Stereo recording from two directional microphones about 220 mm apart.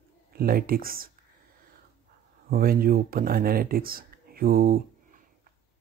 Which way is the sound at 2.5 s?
40° right (ahead or behind).